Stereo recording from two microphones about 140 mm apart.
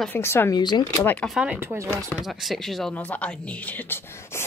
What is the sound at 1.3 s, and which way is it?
Speech, 10° right (ahead or behind).